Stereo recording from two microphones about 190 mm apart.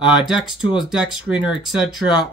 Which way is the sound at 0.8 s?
Centre (ahead or behind).